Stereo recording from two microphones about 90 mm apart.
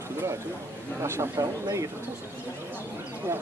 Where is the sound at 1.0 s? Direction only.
30° right (ahead or behind).